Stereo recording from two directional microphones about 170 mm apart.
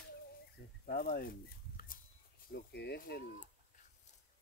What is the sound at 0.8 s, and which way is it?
Speech, 60° left (ahead or behind).